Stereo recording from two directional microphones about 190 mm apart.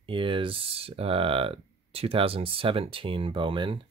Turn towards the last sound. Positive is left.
turn(degrees=-25)  # may be behind; listen again after turning